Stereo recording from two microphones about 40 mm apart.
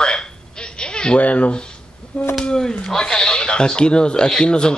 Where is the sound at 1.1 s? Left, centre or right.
Left.